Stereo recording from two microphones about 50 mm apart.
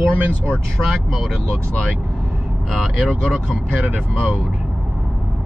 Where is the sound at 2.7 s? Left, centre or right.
Centre.